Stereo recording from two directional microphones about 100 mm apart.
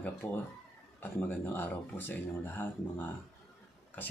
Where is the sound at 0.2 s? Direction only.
15° left (ahead or behind).